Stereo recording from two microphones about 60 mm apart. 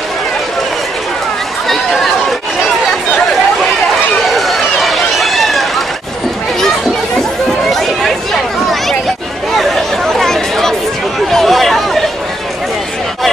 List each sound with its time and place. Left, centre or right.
1.7 s chatter: centre
4.3 s run: centre
7.7 s chatter: centre
9.5 s chatter: centre